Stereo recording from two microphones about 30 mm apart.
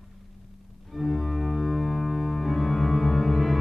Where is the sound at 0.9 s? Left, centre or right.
Centre.